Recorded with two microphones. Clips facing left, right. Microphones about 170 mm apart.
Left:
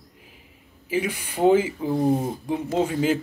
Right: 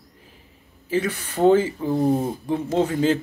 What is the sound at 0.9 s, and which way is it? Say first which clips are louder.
Speech: right 2 dB; 10° left (ahead or behind).